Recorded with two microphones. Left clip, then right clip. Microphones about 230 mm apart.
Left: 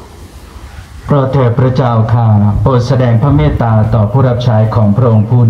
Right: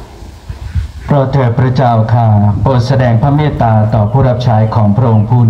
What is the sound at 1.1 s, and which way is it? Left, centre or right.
A man's voice, right.